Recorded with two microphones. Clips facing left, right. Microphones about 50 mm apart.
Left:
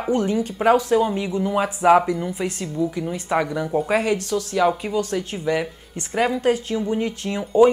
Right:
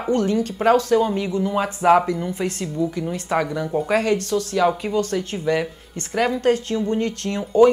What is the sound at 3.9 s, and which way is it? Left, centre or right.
Speech, centre.